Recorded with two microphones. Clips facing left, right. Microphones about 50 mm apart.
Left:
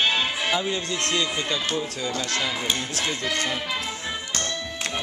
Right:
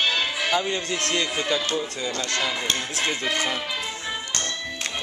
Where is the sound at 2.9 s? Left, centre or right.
Right.